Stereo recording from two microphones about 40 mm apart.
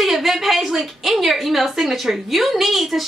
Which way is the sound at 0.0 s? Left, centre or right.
Centre.